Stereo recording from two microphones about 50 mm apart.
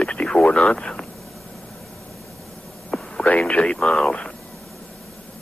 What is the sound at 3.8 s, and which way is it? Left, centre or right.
Speech, centre.